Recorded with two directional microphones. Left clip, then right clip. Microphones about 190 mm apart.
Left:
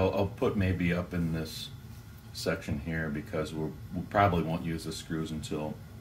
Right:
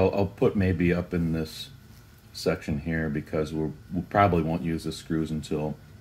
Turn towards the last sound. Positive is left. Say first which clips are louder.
# right 6 dB
turn(degrees=-40)  # may be behind; listen again after turning